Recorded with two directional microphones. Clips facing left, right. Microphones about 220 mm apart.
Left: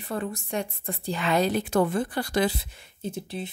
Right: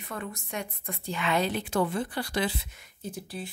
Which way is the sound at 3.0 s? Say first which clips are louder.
Left 4 dB; 25° left (ahead or behind).